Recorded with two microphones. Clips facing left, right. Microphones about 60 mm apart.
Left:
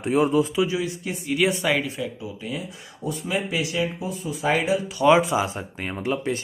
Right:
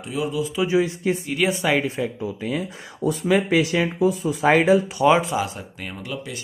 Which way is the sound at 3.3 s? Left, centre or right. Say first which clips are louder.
Right 4 dB; right.